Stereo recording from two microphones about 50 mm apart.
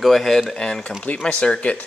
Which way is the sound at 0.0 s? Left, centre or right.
Centre.